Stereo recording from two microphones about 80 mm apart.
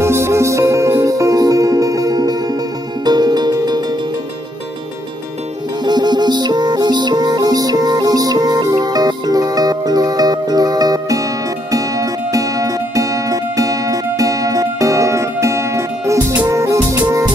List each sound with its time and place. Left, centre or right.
0.0 s music: right
5.9 s music: right